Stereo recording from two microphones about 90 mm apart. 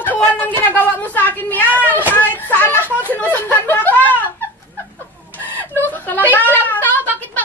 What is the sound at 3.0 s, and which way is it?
Speech, 20° left (ahead or behind).